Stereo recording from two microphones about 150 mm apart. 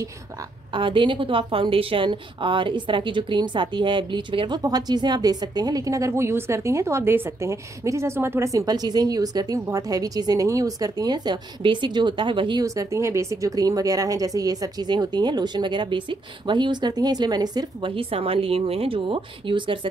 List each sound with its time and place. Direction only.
0.7 s a woman's voice: 35° right (ahead or behind)